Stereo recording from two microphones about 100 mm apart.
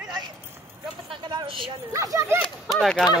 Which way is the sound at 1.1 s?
55° right (ahead or behind).